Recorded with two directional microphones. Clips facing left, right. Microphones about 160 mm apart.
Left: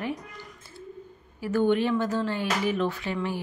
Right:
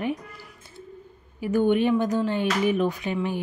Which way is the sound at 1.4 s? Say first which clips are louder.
Right 2 dB; 15° right (ahead or behind).